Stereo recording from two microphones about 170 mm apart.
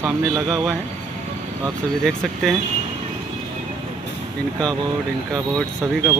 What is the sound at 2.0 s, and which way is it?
Speech, 5° left (ahead or behind).